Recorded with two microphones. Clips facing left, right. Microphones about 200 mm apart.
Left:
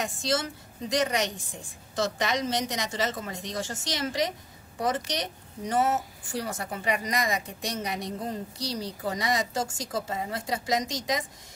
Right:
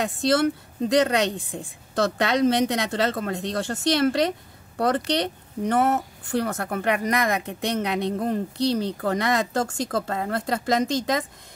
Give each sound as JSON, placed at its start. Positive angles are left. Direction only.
{"t": 0.0, "sound": "a woman's voice", "side_deg": -60}